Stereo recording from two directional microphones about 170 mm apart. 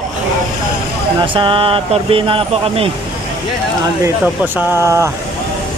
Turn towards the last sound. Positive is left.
turn(degrees=-15)  # may be behind; listen again after turning